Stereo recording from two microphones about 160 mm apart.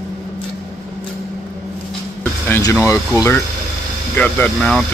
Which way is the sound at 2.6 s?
15° left (ahead or behind).